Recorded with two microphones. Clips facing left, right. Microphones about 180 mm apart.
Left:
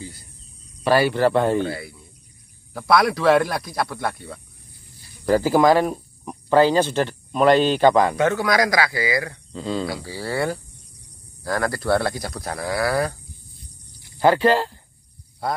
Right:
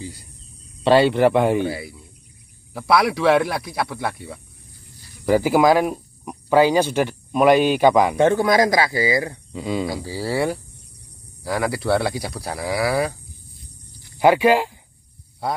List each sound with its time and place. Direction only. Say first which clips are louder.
0.8 s speech: right 3 dB; 25° right (ahead or behind)
8.2 s speech: right 3 dB; 25° right (ahead or behind)
9.5 s speech: even; 10° right (ahead or behind)
14.1 s speech: right 2 dB; 10° right (ahead or behind)